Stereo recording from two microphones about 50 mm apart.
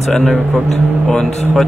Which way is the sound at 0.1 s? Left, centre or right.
Centre.